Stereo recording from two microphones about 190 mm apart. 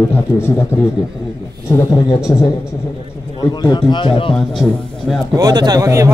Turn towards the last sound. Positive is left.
turn(degrees=-15)  # may be behind; listen again after turning